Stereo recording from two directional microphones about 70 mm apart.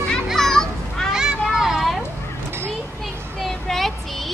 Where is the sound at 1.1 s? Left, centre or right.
Centre.